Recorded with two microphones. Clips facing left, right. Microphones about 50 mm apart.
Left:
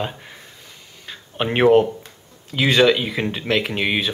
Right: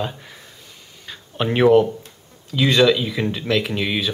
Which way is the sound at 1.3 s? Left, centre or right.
Left.